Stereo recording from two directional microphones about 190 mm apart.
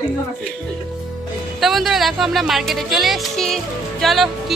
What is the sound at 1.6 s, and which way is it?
Speech, centre (ahead or behind).